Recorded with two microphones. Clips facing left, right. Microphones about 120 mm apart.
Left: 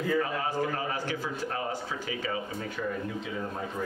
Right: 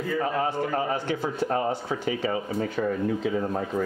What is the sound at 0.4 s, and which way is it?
Speech, 30° right (ahead or behind).